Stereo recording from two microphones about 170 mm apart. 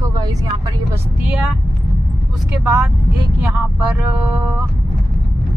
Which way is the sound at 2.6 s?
10° right (ahead or behind).